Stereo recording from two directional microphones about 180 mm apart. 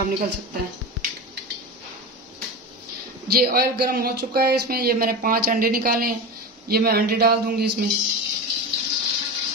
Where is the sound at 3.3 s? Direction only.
55° right (ahead or behind).